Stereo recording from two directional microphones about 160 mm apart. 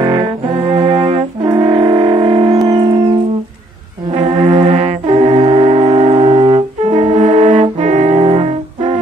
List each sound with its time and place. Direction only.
0.0 s brass instrument: 30° right (ahead or behind)
1.4 s music: 30° right (ahead or behind)
4.2 s brass instrument: 45° right (ahead or behind)